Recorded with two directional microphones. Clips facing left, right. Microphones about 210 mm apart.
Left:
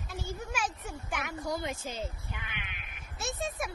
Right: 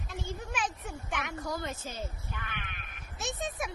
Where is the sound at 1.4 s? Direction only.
15° left (ahead or behind).